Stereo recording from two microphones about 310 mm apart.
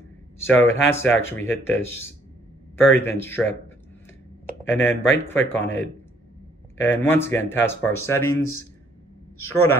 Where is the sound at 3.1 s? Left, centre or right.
Centre.